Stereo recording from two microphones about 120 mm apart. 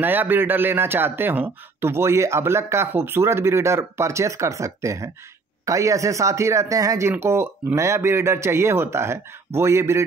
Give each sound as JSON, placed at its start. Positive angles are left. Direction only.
{"t": 0.0, "sound": "speech", "side_deg": -15}